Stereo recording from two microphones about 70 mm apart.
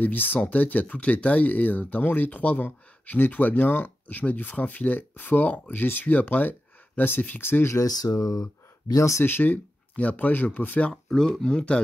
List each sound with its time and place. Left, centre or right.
0.0 s speech: left
7.7 s speech: left
9.2 s speech: left
10.9 s speech: centre